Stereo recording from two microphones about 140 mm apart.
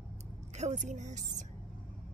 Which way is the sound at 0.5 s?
55° right (ahead or behind).